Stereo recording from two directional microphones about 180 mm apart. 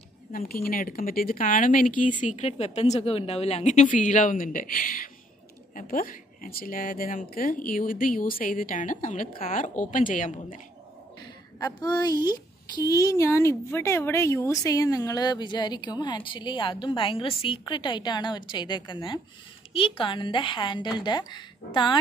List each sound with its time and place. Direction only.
0.3 s a woman's voice: 55° left (ahead or behind)
11.6 s a woman's voice: 20° left (ahead or behind)